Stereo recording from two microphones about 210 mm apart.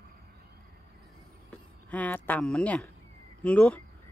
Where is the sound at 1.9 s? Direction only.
5° left (ahead or behind).